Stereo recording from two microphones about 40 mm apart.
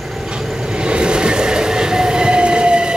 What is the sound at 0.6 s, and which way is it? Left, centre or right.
Train, right.